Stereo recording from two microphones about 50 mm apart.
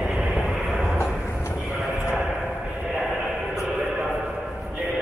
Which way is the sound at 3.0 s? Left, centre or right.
Centre.